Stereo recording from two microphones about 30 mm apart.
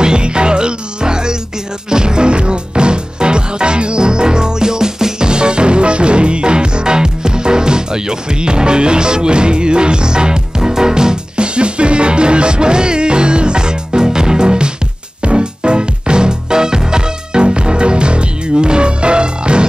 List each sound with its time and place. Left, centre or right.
0.0 s music: right